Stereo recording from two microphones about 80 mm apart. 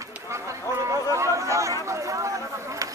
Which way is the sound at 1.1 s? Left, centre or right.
Right.